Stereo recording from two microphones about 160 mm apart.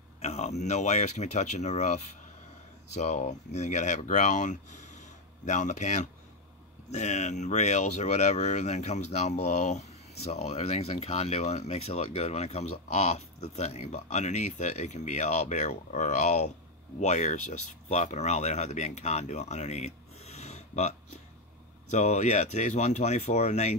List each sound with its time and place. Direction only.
0.2 s speech: 45° left (ahead or behind)
21.9 s speech: 45° left (ahead or behind)